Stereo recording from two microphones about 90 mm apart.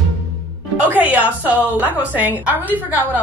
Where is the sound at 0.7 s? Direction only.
20° right (ahead or behind).